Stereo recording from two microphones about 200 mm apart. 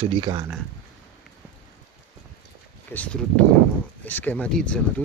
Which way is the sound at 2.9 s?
5° left (ahead or behind).